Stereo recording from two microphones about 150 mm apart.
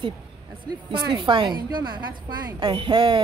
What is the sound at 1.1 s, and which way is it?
Speech, 30° right (ahead or behind).